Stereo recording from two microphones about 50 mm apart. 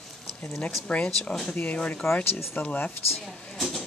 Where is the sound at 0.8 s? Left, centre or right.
Left.